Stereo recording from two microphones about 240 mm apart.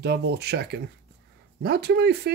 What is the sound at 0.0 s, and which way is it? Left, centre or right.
Speech, right.